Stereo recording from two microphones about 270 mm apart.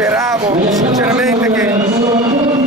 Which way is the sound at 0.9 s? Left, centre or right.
Centre.